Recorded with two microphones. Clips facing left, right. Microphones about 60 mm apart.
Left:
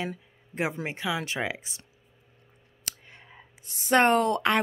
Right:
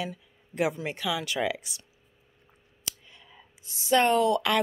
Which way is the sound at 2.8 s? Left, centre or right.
Left.